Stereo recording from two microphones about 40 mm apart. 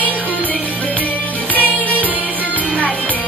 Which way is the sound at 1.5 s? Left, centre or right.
Left.